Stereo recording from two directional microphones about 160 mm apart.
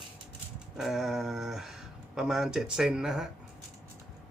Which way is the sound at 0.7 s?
Centre (ahead or behind).